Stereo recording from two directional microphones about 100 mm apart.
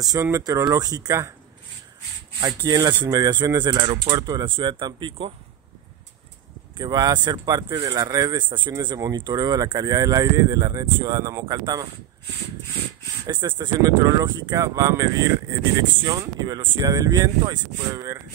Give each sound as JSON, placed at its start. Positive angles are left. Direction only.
{"t": 0.0, "sound": "speech", "side_deg": -35}
{"t": 2.4, "sound": "speech", "side_deg": -40}
{"t": 6.8, "sound": "speech", "side_deg": -45}
{"t": 8.4, "sound": "speech", "side_deg": -55}
{"t": 13.3, "sound": "speech", "side_deg": -50}
{"t": 13.7, "sound": "speech", "side_deg": -40}
{"t": 15.8, "sound": "speech", "side_deg": -50}